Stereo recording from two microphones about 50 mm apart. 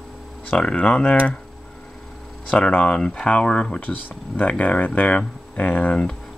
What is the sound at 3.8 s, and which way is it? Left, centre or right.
Speech, left.